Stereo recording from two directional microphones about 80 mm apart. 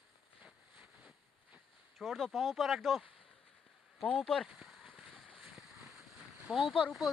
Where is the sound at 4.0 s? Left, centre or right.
Centre.